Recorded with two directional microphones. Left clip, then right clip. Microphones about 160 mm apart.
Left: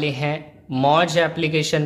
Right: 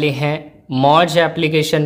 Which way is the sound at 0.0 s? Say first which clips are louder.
Right 5 dB; 25° right (ahead or behind).